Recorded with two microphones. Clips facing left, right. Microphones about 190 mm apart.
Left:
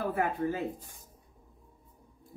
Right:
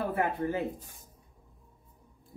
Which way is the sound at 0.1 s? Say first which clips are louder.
Even; 25° right (ahead or behind).